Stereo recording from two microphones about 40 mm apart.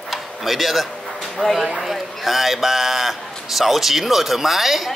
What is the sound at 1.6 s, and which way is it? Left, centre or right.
A man's voice, centre.